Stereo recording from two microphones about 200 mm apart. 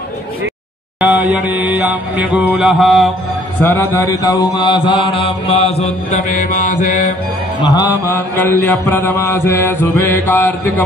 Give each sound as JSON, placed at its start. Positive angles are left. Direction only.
{"t": 1.0, "sound": "mantra", "side_deg": -10}
{"t": 3.6, "sound": "mantra", "side_deg": 10}
{"t": 7.6, "sound": "mantra", "side_deg": 20}